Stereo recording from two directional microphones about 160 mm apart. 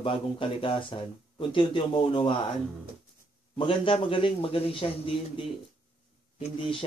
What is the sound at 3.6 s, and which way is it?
Speech, 35° left (ahead or behind).